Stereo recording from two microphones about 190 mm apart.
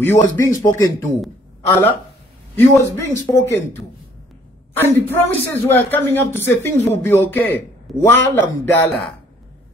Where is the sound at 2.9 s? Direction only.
15° left (ahead or behind).